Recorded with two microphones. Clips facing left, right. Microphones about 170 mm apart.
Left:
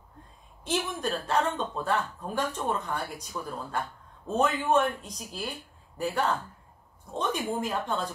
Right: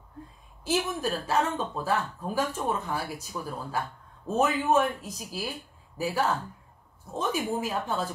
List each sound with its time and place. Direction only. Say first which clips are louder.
0.7 s speech: right 2 dB; 5° right (ahead or behind)